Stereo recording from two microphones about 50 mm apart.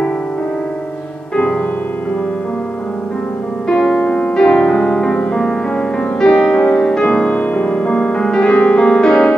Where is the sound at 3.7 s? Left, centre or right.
Centre.